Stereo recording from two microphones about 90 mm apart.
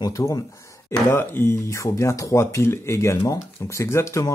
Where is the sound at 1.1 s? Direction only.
25° left (ahead or behind).